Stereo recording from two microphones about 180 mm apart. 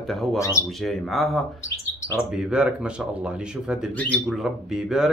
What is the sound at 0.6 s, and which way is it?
Speech, centre (ahead or behind).